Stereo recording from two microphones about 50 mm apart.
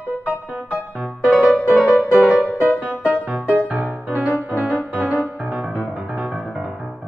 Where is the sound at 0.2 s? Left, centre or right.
Right.